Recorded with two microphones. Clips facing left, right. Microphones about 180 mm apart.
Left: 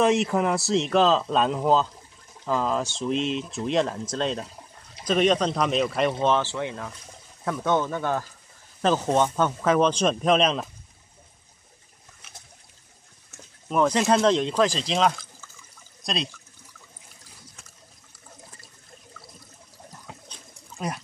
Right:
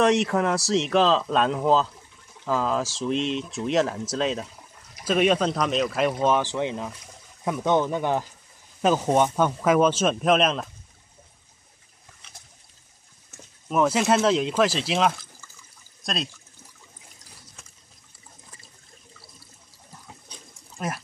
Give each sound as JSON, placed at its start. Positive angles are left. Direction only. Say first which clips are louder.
{"t": 0.0, "sound": "speech", "louder": "right 1 dB", "side_deg": 0}
{"t": 6.2, "sound": "speech", "louder": "right 1 dB", "side_deg": -15}
{"t": 13.3, "sound": "speech", "louder": "even", "side_deg": -5}
{"t": 20.2, "sound": "a sound", "louder": "left 1 dB", "side_deg": -5}